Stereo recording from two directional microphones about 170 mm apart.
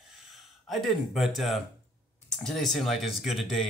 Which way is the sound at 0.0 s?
Centre (ahead or behind).